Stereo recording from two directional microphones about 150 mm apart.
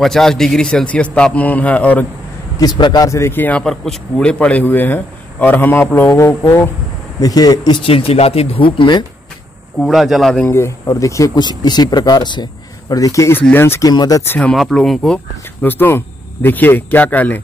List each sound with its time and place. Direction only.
0.0 s speech: centre (ahead or behind)
2.6 s speech: 30° left (ahead or behind)
9.8 s speech: centre (ahead or behind)
10.5 s speech: 20° left (ahead or behind)
14.5 s speech: centre (ahead or behind)